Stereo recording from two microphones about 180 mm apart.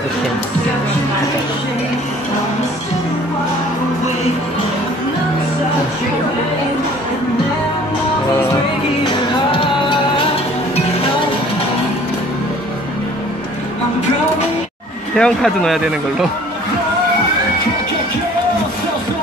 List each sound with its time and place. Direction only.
9.0 s music: 30° left (ahead or behind)
15.1 s speech: 5° left (ahead or behind)